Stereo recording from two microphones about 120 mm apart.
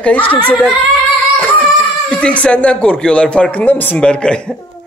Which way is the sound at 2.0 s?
10° left (ahead or behind).